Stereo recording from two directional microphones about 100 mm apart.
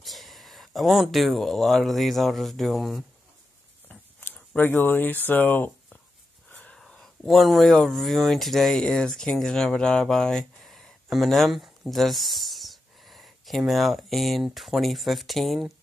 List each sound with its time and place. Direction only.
0.0 s speech: centre (ahead or behind)
3.9 s a sound: 15° left (ahead or behind)
6.5 s wheeze: 10° left (ahead or behind)
6.8 s speech: 5° left (ahead or behind)